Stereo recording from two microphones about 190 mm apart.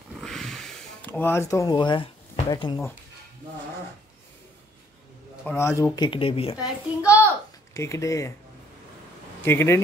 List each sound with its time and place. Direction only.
0.2 s sniff: 5° left (ahead or behind); by 2.0 s 25° left (ahead or behind)
2.5 s speech: 20° left (ahead or behind)
5.4 s speech: 10° left (ahead or behind); by 6.5 s 30° left (ahead or behind)
6.6 s a child's voice: 5° right (ahead or behind)
7.7 s speech: 15° left (ahead or behind)
9.4 s speech: 15° left (ahead or behind)